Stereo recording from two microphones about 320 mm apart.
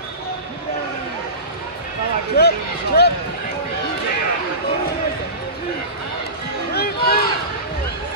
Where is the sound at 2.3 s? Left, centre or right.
Left.